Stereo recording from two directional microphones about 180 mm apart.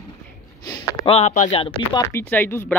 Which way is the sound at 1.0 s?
35° left (ahead or behind).